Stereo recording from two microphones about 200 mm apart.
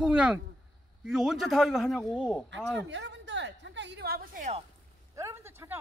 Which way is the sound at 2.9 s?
60° right (ahead or behind).